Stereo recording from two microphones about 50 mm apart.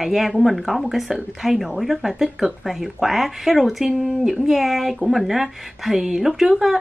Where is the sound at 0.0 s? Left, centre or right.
Centre.